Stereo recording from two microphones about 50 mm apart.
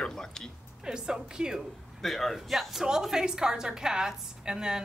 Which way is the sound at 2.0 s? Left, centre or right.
Centre.